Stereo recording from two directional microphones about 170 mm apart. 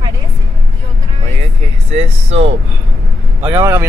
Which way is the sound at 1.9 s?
40° right (ahead or behind).